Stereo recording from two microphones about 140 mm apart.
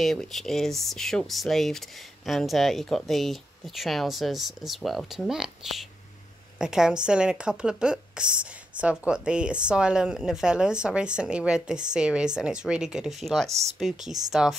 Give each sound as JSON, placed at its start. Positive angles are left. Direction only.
{"t": 0.0, "sound": "a woman's voice", "side_deg": 0}
{"t": 13.5, "sound": "speech", "side_deg": -50}
{"t": 13.7, "sound": "speech", "side_deg": 0}